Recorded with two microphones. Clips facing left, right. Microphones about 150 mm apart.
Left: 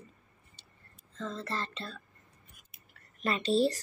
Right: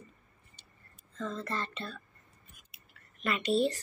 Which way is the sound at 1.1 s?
25° left (ahead or behind).